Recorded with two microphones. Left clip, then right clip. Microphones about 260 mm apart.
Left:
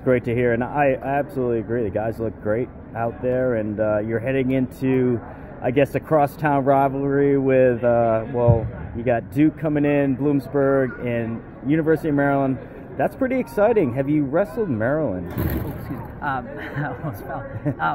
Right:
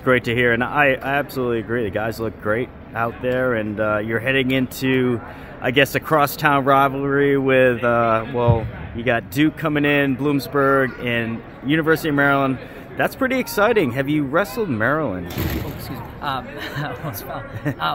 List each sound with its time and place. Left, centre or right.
0.0 s speech: right
16.2 s speech: right